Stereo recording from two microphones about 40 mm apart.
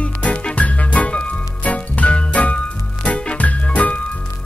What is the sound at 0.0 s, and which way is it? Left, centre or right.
Music, left.